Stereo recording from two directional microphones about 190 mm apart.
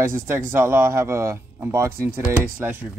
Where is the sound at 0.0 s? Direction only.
10° right (ahead or behind).